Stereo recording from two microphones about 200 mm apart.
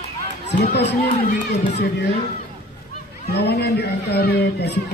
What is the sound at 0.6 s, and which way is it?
Speech, 60° left (ahead or behind).